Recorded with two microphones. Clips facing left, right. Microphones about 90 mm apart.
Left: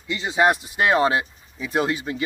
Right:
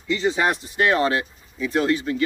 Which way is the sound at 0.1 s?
10° left (ahead or behind).